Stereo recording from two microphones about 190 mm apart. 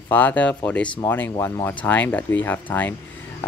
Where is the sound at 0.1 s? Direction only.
10° left (ahead or behind).